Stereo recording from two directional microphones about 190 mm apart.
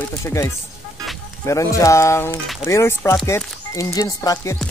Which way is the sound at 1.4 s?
15° left (ahead or behind).